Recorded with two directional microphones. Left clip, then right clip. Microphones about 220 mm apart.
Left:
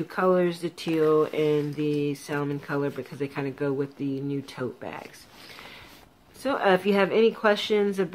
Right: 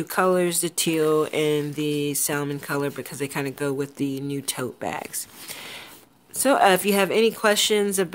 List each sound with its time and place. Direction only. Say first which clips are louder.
0.1 s speech: right 2 dB; 50° right (ahead or behind)
6.4 s speech: right 5 dB; 50° right (ahead or behind)